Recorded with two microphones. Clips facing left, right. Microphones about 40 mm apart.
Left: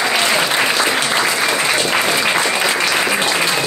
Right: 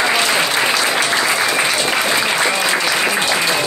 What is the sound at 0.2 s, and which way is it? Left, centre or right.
Applause, centre.